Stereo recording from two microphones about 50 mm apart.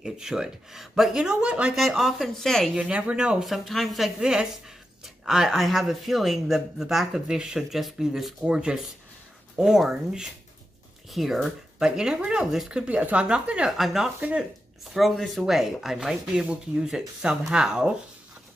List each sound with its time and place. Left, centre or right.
0.0 s speech: centre
1.4 s speech: right
1.8 s speech: centre
2.3 s a woman's voice: centre
2.8 s speech: right
3.4 s speech: centre
4.2 s speech: centre
7.2 s speech: centre
8.5 s speech: centre
13.7 s speech: centre